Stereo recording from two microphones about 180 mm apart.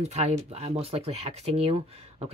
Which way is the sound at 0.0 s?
35° right (ahead or behind).